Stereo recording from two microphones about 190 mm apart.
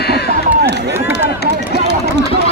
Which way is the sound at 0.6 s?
60° right (ahead or behind).